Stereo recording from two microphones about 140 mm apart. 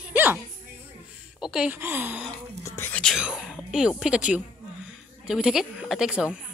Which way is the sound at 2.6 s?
15° left (ahead or behind).